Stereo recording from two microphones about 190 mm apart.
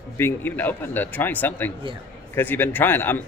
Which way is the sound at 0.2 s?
10° left (ahead or behind).